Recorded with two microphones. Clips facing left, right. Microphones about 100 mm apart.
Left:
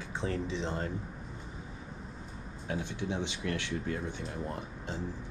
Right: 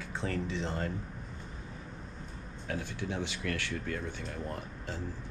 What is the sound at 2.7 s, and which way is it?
Speech, 25° left (ahead or behind).